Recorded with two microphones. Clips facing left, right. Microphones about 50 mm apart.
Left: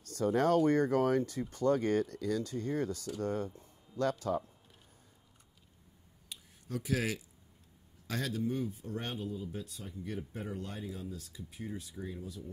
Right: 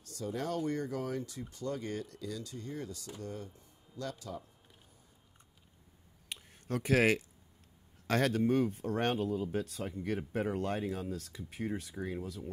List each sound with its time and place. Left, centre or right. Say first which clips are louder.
0.0 s speech: left 8 dB; left
6.2 s a sound: right 5 dB; right
8.1 s speech: right 6 dB; right